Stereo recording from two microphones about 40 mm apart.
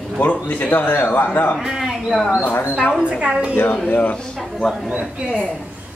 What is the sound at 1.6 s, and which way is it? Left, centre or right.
Speech, centre.